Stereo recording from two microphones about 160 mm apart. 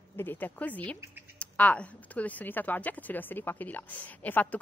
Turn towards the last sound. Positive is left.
turn(degrees=10)  # may be behind; listen again after turning